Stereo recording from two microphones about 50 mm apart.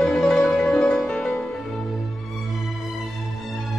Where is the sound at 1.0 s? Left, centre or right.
Centre.